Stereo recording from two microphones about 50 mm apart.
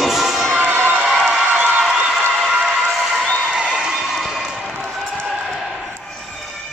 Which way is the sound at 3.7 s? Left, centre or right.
Centre.